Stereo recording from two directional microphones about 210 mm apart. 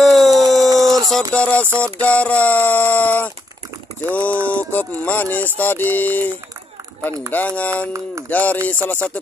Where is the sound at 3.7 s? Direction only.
15° right (ahead or behind).